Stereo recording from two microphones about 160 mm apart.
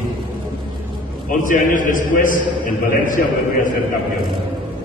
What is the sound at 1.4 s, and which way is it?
A man's voice, 55° left (ahead or behind).